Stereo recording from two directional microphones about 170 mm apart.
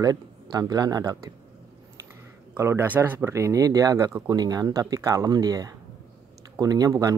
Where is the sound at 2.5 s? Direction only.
15° right (ahead or behind).